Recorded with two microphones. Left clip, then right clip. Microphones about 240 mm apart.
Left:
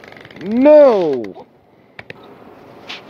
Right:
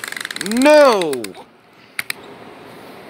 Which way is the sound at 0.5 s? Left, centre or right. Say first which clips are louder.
Left 2 dB; centre.